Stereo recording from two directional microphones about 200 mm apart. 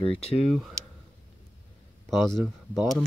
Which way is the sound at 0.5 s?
Centre (ahead or behind).